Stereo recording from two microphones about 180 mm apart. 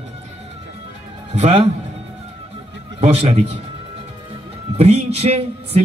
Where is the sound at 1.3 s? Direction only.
35° right (ahead or behind).